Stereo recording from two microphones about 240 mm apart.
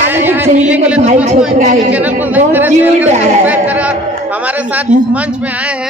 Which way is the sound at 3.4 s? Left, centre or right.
Centre.